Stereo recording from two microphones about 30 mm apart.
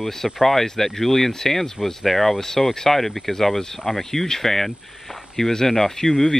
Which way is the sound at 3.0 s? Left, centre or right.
Centre.